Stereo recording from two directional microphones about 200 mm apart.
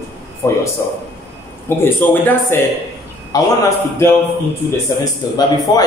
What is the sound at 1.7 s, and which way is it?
A man's voice, 10° left (ahead or behind).